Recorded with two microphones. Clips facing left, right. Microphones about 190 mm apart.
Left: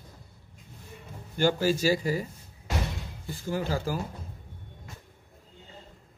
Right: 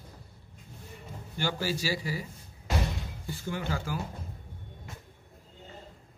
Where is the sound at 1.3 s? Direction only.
45° left (ahead or behind).